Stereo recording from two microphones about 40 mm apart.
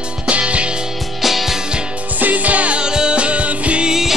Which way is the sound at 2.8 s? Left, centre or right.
Right.